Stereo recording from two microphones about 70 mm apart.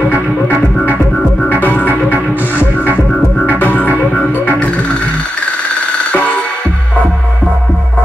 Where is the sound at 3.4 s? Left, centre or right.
Left.